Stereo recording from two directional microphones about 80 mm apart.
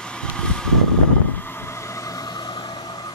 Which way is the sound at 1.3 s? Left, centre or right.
Left.